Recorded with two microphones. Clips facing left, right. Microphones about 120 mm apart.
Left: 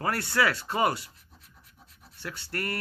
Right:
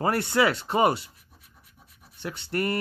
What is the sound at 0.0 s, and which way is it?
Speech, 25° right (ahead or behind).